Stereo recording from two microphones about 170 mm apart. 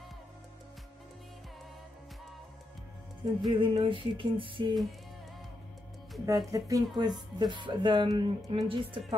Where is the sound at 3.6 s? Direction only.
30° right (ahead or behind).